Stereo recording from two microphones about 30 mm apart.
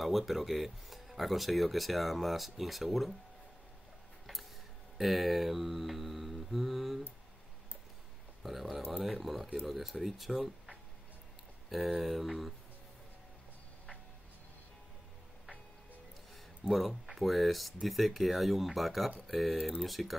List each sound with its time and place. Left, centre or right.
0.0 s speech: centre
4.9 s mantra: centre
8.4 s speech: centre
11.7 s speech: centre
16.6 s speech: centre